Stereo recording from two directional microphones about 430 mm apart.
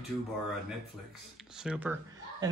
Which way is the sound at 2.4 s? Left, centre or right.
Centre.